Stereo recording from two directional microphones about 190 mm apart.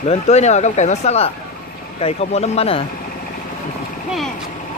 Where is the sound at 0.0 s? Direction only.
35° left (ahead or behind).